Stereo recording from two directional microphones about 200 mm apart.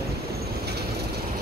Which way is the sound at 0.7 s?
55° right (ahead or behind).